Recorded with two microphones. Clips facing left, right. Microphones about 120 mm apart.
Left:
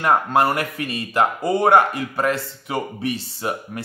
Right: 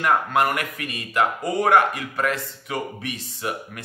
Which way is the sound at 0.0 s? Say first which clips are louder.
Left 3 dB; 30° left (ahead or behind).